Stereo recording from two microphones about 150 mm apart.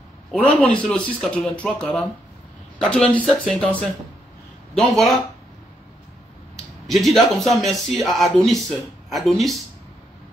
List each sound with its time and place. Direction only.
0.3 s speech: 5° left (ahead or behind)
6.9 s speech: centre (ahead or behind)